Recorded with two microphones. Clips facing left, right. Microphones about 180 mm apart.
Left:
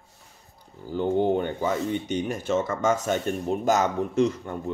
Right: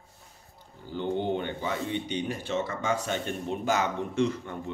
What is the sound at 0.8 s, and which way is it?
Speech, 40° left (ahead or behind).